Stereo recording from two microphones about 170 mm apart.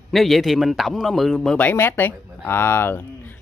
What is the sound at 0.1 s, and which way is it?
Speech, centre (ahead or behind).